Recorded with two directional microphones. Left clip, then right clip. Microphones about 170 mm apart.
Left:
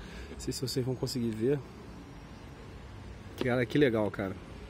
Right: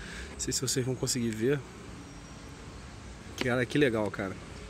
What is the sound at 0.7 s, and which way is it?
Speech, centre (ahead or behind).